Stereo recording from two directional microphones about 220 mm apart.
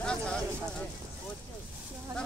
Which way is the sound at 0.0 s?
5° left (ahead or behind).